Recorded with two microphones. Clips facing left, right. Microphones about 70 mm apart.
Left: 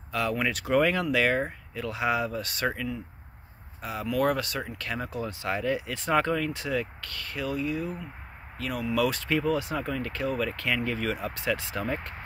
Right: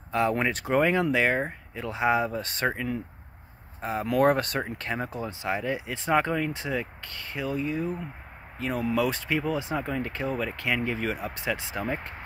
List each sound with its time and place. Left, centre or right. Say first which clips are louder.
0.1 s speech: right 3 dB; right